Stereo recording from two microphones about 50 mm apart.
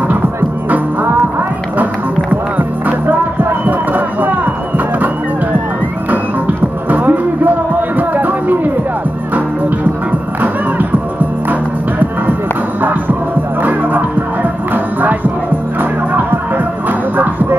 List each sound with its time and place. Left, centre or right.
3.6 s a sound: right
4.7 s music: right
10.4 s music: right
13.6 s music: right